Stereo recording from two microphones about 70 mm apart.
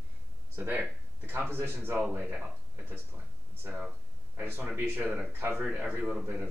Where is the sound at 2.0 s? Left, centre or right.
Right.